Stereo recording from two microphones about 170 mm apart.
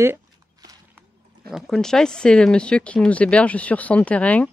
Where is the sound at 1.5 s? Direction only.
Centre (ahead or behind).